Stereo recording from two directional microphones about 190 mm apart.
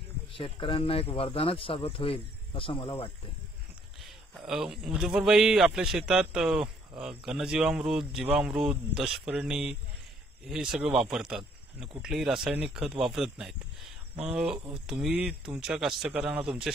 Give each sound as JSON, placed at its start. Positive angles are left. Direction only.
{"t": 0.3, "sound": "speech", "side_deg": 25}
{"t": 4.0, "sound": "speech", "side_deg": 0}